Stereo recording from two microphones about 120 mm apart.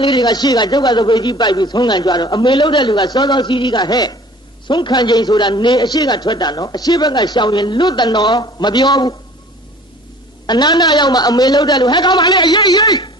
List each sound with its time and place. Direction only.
0.0 s a man's voice: 35° left (ahead or behind)
10.4 s a man's voice: 35° left (ahead or behind)